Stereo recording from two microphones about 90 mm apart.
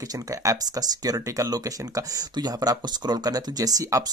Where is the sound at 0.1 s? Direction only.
35° right (ahead or behind).